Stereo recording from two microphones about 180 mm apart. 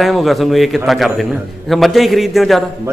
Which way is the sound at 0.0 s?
Centre (ahead or behind).